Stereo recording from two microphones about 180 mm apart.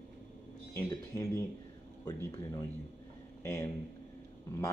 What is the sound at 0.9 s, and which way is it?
Speech, 20° left (ahead or behind).